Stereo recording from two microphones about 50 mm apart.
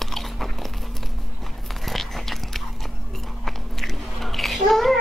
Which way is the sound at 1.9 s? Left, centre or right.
Centre.